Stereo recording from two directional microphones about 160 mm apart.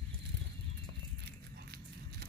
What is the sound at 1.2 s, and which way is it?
Biting, 85° right.